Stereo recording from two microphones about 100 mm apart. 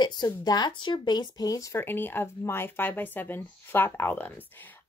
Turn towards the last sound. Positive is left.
turn(degrees=20)  # may be behind; listen again after turning